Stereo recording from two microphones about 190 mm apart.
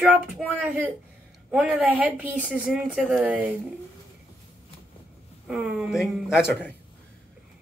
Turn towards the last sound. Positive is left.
turn(degrees=-5)  # may be behind; listen again after turning